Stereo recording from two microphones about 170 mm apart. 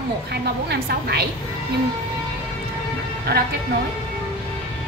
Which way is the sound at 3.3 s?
70° right (ahead or behind).